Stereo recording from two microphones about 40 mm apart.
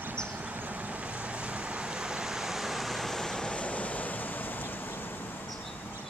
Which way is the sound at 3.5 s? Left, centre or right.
Left.